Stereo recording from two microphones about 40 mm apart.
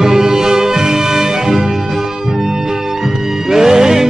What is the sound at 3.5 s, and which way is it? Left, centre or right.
Music, centre.